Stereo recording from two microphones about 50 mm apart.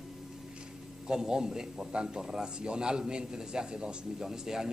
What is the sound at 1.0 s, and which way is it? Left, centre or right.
A man's voice, centre.